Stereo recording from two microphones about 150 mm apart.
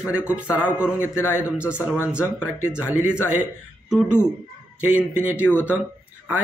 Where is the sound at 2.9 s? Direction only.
10° right (ahead or behind).